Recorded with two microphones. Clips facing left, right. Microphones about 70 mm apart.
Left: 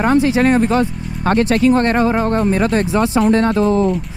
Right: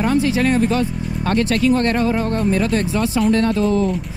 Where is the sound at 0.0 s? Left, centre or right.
Left.